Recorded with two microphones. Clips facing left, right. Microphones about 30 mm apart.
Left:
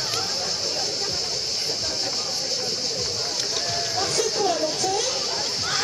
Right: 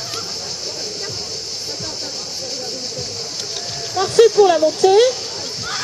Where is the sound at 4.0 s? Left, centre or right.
Right.